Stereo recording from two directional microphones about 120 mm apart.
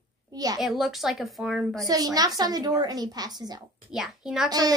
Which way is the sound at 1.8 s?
30° right (ahead or behind).